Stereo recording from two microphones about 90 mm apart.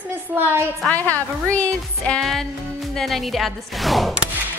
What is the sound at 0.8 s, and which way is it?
Speech, 15° left (ahead or behind).